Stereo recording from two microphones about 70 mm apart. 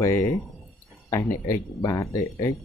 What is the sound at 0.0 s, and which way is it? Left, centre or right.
Speech, left.